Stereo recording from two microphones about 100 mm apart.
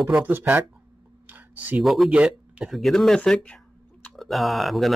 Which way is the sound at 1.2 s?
20° right (ahead or behind).